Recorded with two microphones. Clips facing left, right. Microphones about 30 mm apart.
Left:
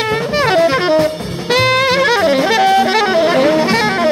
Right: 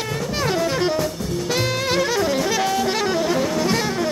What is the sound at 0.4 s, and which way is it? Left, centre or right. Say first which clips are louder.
Saxophone: left 8 dB; left.